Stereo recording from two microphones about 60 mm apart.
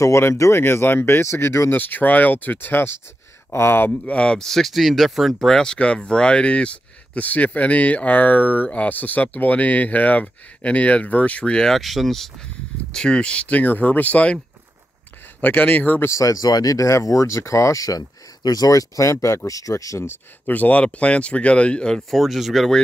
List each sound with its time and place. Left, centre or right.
0.0 s speech: left
0.7 s speech: left
1.8 s speech: left
4.0 s speech: centre
4.5 s speech: centre
5.5 s speech: centre
15.4 s speech: left
16.1 s speech: left
20.1 s speech: left; by 22.0 s centre
22.1 s speech: centre